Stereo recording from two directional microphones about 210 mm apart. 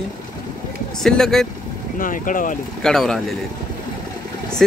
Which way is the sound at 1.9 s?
40° left (ahead or behind).